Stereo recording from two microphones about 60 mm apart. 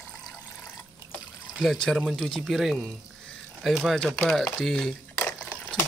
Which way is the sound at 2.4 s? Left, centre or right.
Centre.